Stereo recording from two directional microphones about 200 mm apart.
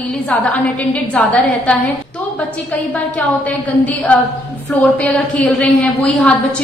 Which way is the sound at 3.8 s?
5° left (ahead or behind).